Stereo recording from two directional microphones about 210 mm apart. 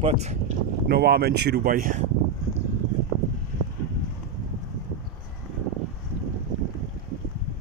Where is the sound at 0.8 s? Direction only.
50° right (ahead or behind).